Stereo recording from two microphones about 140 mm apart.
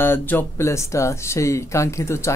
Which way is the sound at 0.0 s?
15° left (ahead or behind).